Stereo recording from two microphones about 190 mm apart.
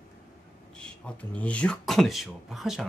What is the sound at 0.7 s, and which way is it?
Speech, 5° left (ahead or behind).